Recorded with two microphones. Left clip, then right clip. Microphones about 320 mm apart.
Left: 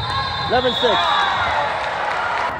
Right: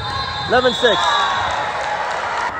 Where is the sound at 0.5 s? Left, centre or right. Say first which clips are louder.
Right 3 dB; right.